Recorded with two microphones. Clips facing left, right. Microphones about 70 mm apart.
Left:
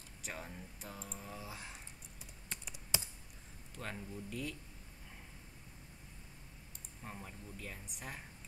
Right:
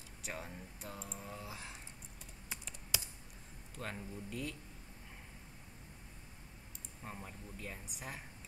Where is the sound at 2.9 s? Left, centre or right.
Left.